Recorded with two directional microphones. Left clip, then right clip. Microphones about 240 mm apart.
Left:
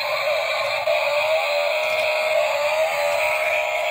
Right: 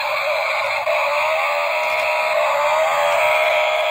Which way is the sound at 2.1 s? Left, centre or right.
Centre.